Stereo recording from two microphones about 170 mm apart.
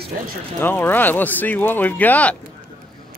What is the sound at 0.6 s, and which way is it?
Speech, 10° left (ahead or behind).